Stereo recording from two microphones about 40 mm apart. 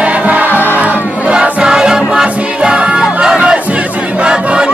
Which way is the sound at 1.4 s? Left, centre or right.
Right.